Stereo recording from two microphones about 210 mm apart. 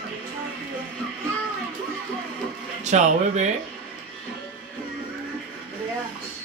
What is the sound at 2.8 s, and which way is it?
Speech, 35° right (ahead or behind).